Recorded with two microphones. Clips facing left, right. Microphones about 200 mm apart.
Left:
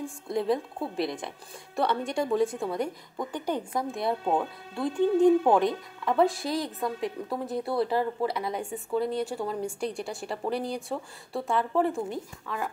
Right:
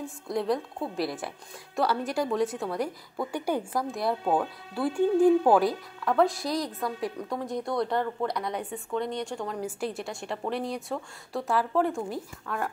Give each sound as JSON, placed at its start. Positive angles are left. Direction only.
{"t": 0.3, "sound": "a woman's voice", "side_deg": 0}